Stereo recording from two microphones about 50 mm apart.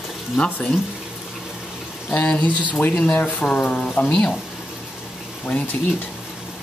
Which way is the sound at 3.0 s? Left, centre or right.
Left.